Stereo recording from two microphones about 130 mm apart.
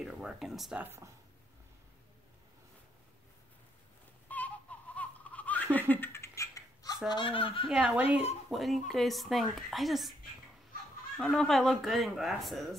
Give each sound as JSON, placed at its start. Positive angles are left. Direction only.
{"t": 0.0, "sound": "speech", "side_deg": -5}
{"t": 0.8, "sound": "speech", "side_deg": -20}
{"t": 4.3, "sound": "a sound", "side_deg": 10}
{"t": 5.8, "sound": "cat", "side_deg": 15}
{"t": 7.1, "sound": "speech", "side_deg": 40}
{"t": 7.7, "sound": "a woman's voice", "side_deg": -5}
{"t": 11.1, "sound": "a woman's voice", "side_deg": 5}